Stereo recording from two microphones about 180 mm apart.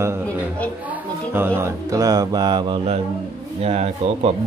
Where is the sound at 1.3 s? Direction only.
10° right (ahead or behind).